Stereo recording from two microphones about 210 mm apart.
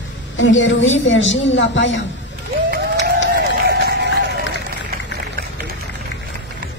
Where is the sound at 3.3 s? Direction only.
50° right (ahead or behind).